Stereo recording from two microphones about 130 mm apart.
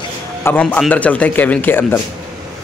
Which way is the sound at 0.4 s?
15° left (ahead or behind).